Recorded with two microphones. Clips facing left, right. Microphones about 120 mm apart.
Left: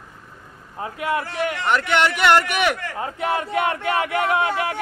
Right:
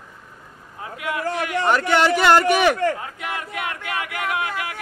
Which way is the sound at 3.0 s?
30° left (ahead or behind).